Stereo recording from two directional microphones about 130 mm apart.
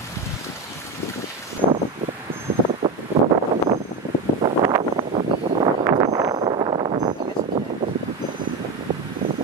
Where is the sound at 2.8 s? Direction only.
35° right (ahead or behind).